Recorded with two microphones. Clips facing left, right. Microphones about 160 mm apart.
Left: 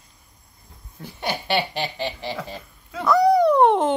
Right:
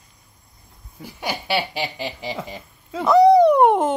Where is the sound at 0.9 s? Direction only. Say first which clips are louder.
Even; 10° right (ahead or behind).